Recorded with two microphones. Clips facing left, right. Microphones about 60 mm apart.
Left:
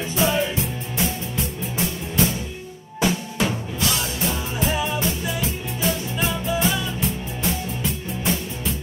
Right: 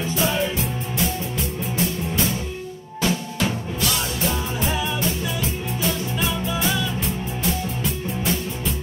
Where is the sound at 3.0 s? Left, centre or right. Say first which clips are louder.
Left 1 dB; centre.